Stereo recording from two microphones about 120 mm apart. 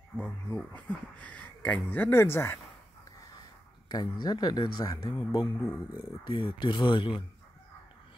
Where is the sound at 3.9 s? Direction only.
35° left (ahead or behind).